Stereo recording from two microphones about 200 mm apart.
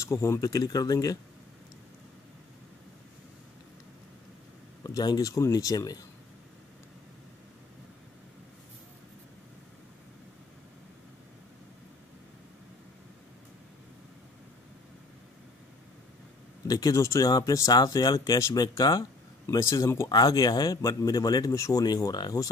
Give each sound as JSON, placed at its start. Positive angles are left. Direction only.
{"t": 0.0, "sound": "speech", "side_deg": 15}
{"t": 4.8, "sound": "speech", "side_deg": 20}
{"t": 16.6, "sound": "speech", "side_deg": 20}